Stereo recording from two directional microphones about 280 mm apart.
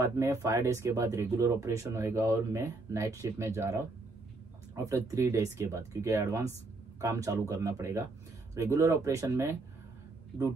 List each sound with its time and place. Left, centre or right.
0.0 s speech: centre